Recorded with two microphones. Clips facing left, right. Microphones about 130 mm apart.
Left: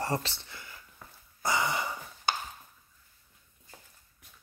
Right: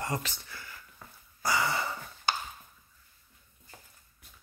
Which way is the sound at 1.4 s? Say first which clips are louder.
Even; 20° left (ahead or behind).